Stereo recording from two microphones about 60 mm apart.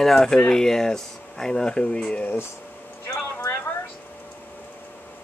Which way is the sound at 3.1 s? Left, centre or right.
Left.